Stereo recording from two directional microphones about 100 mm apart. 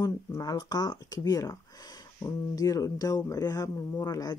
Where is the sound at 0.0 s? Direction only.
40° left (ahead or behind).